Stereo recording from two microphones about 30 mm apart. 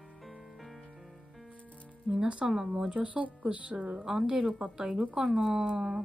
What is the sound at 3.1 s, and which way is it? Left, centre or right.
Speech, right.